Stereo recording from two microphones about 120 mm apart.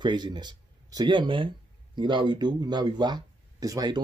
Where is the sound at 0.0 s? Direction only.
40° right (ahead or behind).